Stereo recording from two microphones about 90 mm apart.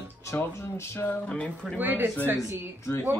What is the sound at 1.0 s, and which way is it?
Speech, 15° left (ahead or behind).